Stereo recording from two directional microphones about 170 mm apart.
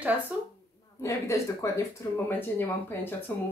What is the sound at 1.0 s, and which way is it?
Speech, 15° left (ahead or behind).